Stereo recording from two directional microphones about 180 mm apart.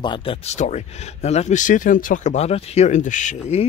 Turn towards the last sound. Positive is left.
turn(degrees=40)  # may be behind; listen again after turning